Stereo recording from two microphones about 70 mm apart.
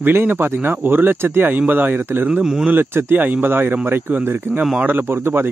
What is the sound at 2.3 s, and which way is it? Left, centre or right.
Speech, centre.